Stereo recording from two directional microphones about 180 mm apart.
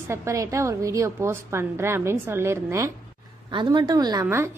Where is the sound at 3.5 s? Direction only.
25° right (ahead or behind).